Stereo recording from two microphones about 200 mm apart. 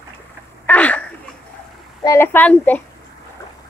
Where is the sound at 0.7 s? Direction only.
5° left (ahead or behind).